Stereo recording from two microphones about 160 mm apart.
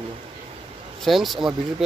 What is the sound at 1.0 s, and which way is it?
Speech, centre (ahead or behind).